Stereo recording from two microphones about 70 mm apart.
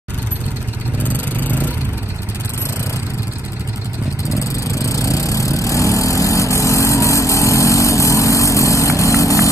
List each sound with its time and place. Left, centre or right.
0.9 s vehicle: left
4.3 s vehicle: left